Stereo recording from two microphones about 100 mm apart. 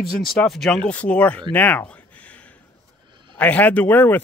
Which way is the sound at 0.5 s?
5° left (ahead or behind).